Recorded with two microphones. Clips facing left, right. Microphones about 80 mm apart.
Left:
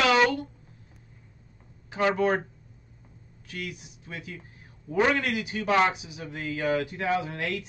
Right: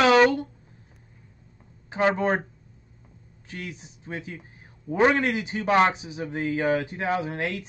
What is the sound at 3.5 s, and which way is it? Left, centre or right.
A man's voice, right.